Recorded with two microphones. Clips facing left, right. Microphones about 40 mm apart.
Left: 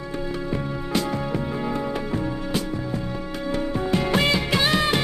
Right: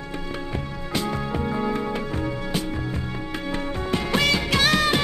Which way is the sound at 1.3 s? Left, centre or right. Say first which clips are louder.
Right 1 dB; centre.